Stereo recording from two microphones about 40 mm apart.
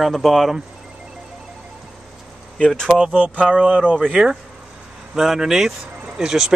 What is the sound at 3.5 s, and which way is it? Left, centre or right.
Speech, right.